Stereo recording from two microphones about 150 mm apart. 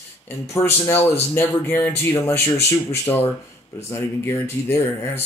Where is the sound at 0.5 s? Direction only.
15° left (ahead or behind).